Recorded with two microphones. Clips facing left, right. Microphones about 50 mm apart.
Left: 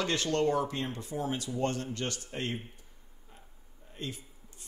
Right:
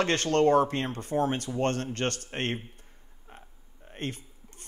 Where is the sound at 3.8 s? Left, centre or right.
Right.